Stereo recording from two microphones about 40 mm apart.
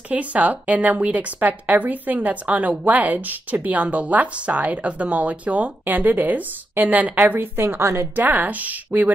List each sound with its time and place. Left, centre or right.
0.1 s speech: right
7.3 s a woman's voice: right
8.2 s speech: right